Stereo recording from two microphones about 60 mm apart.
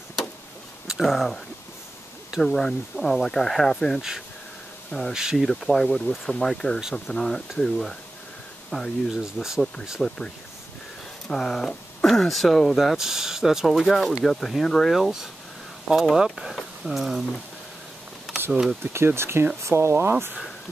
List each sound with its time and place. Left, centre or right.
0.8 s speech: centre
2.4 s speech: centre
5.1 s speech: centre
5.4 s speech: centre
6.8 s speech: centre
7.2 s speech: centre
9.1 s speech: centre
10.0 s speech: centre
12.1 s speech: centre
16.3 s a sound: centre
18.5 s speech: centre
18.9 s speech: right